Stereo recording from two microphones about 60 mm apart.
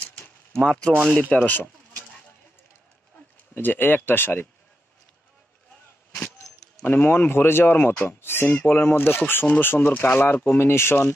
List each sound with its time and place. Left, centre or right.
0.7 s speech: centre
1.3 s speech: left
3.5 s speech: left
6.9 s speech: left
7.7 s speech: left
8.5 s speech: left
10.6 s speech: left